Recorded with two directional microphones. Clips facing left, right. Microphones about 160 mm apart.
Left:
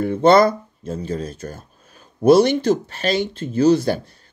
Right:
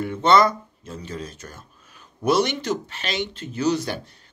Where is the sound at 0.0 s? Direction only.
40° left (ahead or behind).